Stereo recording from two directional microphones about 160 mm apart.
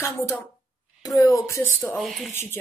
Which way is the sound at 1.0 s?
20° left (ahead or behind).